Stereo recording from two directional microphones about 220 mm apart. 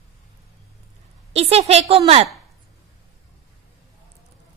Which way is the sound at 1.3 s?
30° right (ahead or behind).